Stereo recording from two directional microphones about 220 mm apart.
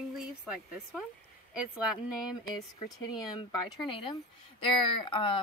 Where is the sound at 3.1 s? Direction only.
20° left (ahead or behind).